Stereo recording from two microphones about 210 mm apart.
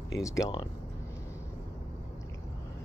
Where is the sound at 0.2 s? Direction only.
15° left (ahead or behind).